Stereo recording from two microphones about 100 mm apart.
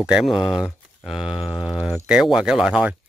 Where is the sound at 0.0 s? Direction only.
5° right (ahead or behind).